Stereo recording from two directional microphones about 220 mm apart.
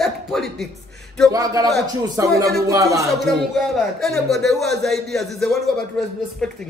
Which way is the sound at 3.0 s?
Centre (ahead or behind).